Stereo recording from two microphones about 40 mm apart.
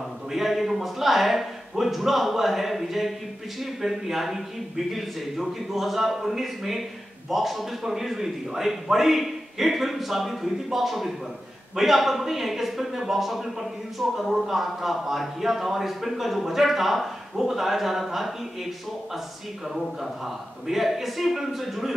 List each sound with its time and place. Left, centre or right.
0.3 s speech: centre
20.6 s speech: centre